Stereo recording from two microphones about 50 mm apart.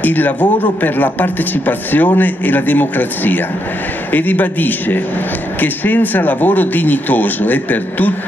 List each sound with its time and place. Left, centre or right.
0.0 s a man's voice: left